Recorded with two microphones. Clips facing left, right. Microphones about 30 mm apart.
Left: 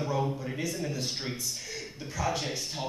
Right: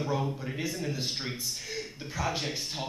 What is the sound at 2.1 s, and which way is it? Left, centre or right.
Speech, centre.